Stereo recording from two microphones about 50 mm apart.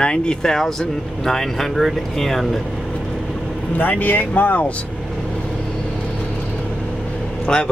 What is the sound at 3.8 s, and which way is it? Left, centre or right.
Speech, left.